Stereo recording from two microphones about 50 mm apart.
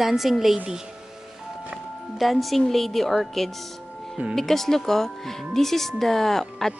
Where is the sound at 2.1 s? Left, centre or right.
Centre.